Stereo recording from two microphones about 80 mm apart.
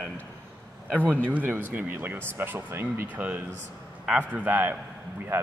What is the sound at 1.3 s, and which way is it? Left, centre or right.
A man's voice, right.